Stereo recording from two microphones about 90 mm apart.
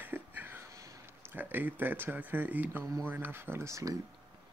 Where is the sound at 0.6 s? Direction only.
35° right (ahead or behind).